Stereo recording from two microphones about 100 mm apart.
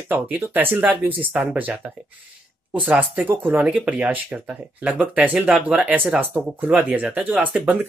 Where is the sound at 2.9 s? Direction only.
15° right (ahead or behind).